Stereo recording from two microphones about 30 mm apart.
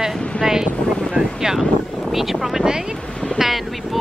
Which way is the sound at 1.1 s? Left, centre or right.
Right.